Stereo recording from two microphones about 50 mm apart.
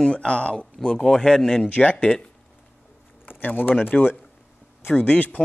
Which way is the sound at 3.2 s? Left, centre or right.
Left.